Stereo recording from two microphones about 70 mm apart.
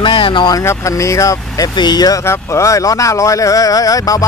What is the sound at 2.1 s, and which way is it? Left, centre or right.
Speech, left.